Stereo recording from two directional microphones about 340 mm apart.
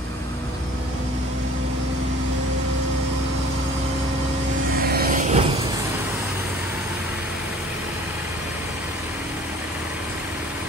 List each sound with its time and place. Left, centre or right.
4.8 s vehicle: right